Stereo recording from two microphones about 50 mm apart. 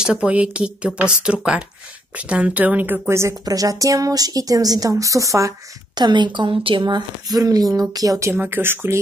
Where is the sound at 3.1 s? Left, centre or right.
Right.